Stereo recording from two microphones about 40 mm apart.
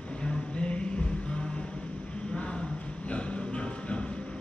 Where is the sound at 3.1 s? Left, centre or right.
Left.